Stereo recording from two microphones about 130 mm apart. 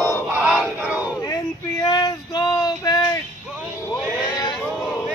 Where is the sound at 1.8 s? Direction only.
30° left (ahead or behind).